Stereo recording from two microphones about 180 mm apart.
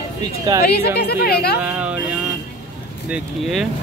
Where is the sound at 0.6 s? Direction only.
65° left (ahead or behind).